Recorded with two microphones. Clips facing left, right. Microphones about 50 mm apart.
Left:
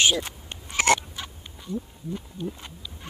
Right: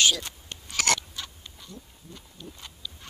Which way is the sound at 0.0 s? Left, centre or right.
Left.